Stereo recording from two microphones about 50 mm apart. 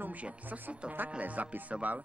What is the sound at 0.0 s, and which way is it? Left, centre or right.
Speech, right.